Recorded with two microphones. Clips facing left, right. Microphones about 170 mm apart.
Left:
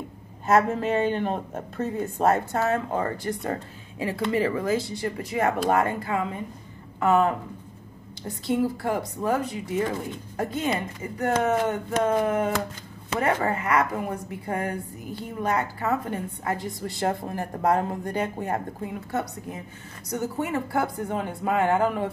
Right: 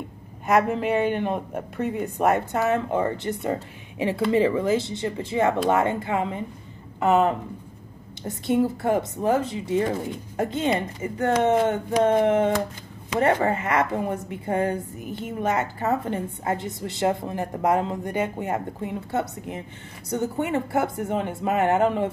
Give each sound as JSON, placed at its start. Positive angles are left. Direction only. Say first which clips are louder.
{"t": 0.5, "sound": "speech", "louder": "even", "side_deg": -15}